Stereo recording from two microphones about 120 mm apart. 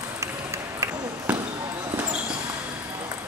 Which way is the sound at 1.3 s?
10° right (ahead or behind).